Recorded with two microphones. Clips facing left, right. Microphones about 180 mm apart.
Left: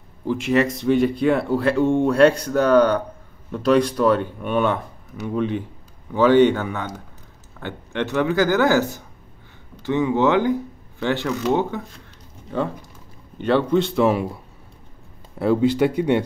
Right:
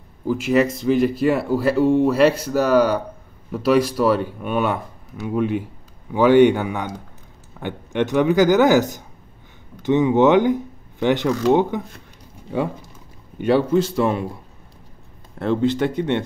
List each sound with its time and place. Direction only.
0.3 s speech: centre (ahead or behind)
13.4 s speech: 10° right (ahead or behind)
15.3 s speech: 5° left (ahead or behind)